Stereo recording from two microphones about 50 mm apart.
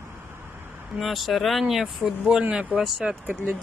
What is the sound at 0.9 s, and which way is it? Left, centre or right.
Speech, centre.